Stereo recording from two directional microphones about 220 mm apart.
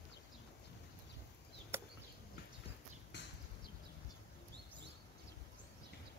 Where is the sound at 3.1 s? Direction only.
50° left (ahead or behind).